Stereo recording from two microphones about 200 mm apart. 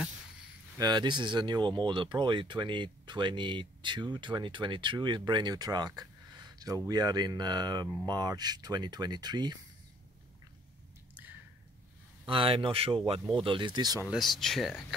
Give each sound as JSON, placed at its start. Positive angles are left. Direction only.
{"t": 0.7, "sound": "speech", "side_deg": -20}
{"t": 12.3, "sound": "speech", "side_deg": -25}
{"t": 14.1, "sound": "speech", "side_deg": 0}